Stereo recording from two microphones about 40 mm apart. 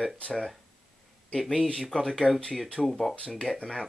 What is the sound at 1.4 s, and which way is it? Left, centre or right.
Speech, centre.